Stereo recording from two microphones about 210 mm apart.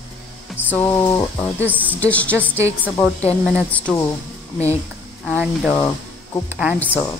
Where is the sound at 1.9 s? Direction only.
5° left (ahead or behind).